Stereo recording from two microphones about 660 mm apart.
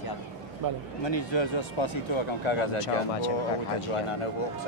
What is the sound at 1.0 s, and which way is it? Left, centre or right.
Speech, left.